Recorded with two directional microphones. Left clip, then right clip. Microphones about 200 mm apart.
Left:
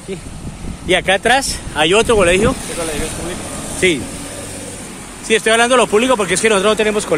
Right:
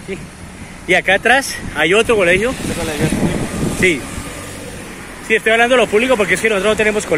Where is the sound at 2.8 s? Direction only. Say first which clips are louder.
Right 4 dB; 60° right (ahead or behind).